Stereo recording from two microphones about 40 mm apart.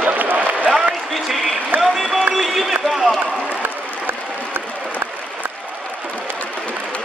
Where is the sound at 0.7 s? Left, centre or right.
Centre.